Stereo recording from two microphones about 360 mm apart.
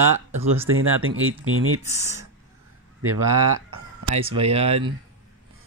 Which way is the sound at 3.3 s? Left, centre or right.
Right.